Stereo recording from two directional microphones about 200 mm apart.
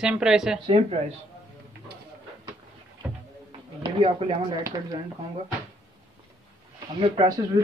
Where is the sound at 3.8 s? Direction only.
25° right (ahead or behind).